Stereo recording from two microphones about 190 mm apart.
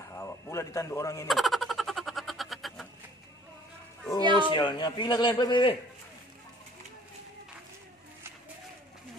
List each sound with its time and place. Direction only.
0.1 s speech: 15° left (ahead or behind)
1.2 s a sound: centre (ahead or behind)
4.2 s speech: 25° right (ahead or behind)
4.5 s speech: 25° left (ahead or behind)